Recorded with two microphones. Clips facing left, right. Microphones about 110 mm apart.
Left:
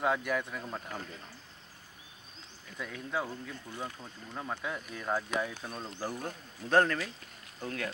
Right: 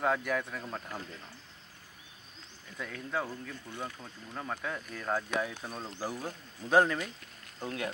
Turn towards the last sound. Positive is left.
turn(degrees=-20)  # may be behind; listen again after turning